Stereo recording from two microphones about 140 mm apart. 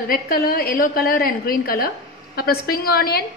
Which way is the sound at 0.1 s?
90° left.